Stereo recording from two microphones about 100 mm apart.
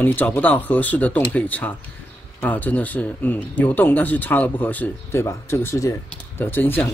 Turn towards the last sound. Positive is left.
turn(degrees=20)  # may be behind; listen again after turning